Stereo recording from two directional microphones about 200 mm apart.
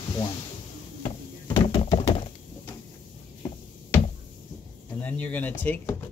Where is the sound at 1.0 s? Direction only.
30° left (ahead or behind).